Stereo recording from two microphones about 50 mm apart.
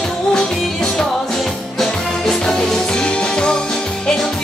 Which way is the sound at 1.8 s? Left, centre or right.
Centre.